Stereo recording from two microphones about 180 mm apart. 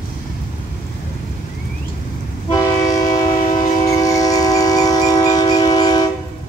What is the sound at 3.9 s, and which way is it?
Train, 20° left (ahead or behind).